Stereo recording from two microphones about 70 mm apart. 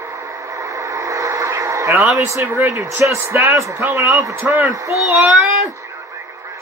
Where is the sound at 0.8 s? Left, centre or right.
Right.